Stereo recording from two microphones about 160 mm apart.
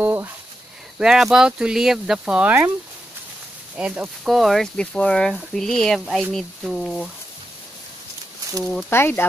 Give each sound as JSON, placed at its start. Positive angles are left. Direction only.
{"t": 0.0, "sound": "a sound", "side_deg": -15}
{"t": 0.9, "sound": "speech", "side_deg": -5}
{"t": 3.7, "sound": "speech", "side_deg": -5}
{"t": 8.9, "sound": "speech", "side_deg": 15}